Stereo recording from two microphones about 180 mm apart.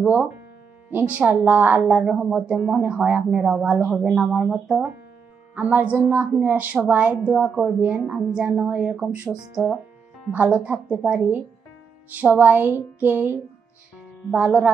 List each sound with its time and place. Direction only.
0.0 s a woman's voice: 10° right (ahead or behind)